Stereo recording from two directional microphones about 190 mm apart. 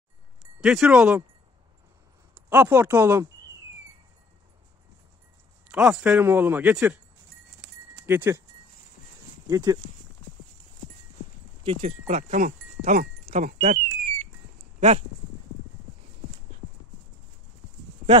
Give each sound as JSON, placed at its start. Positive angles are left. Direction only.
{"t": 0.6, "sound": "speech", "side_deg": -5}
{"t": 2.3, "sound": "speech", "side_deg": -10}
{"t": 5.7, "sound": "speech", "side_deg": -5}
{"t": 8.1, "sound": "speech", "side_deg": -10}
{"t": 9.5, "sound": "speech", "side_deg": -20}
{"t": 11.6, "sound": "speech", "side_deg": -30}